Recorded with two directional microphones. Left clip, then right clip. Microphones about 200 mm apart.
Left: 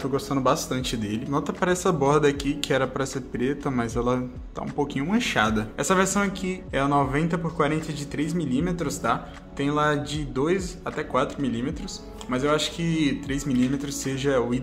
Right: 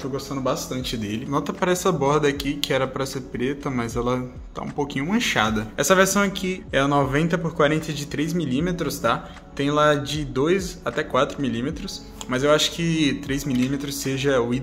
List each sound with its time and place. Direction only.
0.1 s speech: 20° left (ahead or behind)
1.0 s speech: centre (ahead or behind)